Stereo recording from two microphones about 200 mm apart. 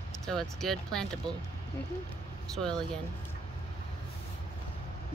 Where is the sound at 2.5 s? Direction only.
5° left (ahead or behind).